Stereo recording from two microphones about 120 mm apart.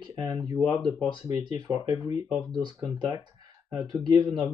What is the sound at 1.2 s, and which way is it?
Speech, 30° right (ahead or behind).